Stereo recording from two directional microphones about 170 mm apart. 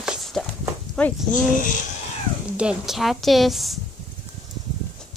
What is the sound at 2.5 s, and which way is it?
Speech, 5° right (ahead or behind).